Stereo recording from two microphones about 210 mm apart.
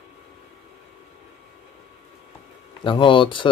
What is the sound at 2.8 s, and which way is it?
Speech, 25° left (ahead or behind).